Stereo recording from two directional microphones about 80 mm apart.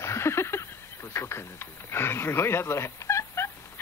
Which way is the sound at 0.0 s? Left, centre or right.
Left.